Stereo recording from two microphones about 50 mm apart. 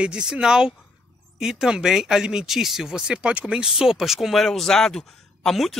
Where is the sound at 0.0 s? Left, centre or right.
Centre.